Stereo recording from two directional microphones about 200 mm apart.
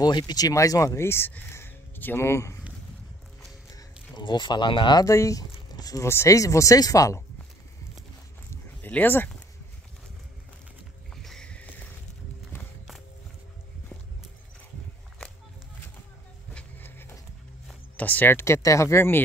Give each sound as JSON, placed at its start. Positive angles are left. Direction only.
{"t": 0.0, "sound": "speech", "side_deg": 20}
{"t": 3.7, "sound": "speech", "side_deg": 20}
{"t": 8.8, "sound": "speech", "side_deg": 10}
{"t": 11.2, "sound": "boat", "side_deg": 5}
{"t": 16.5, "sound": "a sound", "side_deg": 10}
{"t": 17.6, "sound": "speech", "side_deg": 10}